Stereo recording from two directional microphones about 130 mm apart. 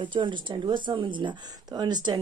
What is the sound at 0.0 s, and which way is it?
Speech, 35° right (ahead or behind).